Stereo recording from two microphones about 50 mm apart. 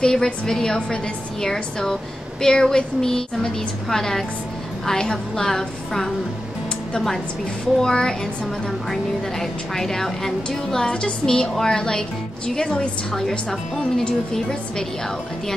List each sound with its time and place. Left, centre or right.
0.0 s speech: centre
7.8 s a woman's voice: centre
13.5 s speech: centre